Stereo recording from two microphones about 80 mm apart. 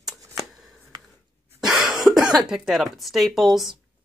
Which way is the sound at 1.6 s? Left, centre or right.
Centre.